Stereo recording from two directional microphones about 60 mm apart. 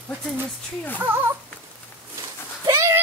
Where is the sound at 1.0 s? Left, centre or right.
Right.